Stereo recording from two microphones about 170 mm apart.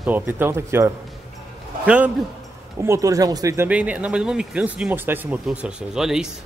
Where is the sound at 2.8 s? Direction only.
15° right (ahead or behind).